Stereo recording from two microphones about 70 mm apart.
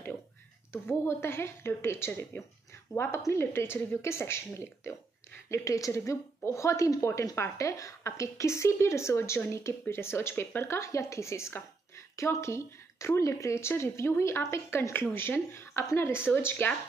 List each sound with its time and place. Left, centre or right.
0.8 s a woman's voice: left